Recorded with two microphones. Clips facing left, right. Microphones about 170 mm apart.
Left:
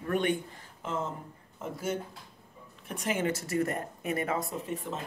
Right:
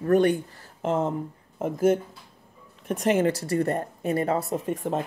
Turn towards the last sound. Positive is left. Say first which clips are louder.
# right 9 dB
turn(degrees=-50)  # may be behind; listen again after turning